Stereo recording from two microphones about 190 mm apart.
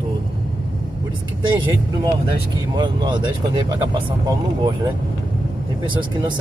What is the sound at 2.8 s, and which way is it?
Speech, 25° right (ahead or behind).